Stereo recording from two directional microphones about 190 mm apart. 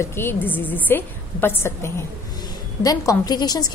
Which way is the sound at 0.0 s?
10° left (ahead or behind).